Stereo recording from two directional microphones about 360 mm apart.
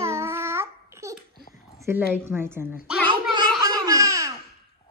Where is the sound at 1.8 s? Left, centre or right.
Centre.